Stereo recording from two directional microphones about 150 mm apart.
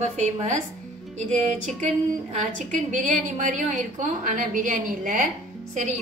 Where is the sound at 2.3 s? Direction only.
55° right (ahead or behind).